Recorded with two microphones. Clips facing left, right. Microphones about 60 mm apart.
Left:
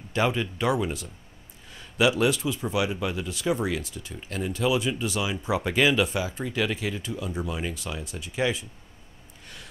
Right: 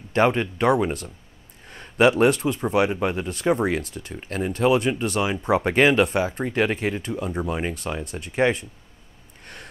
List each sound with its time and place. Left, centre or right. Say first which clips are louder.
0.1 s speech: right 6 dB; right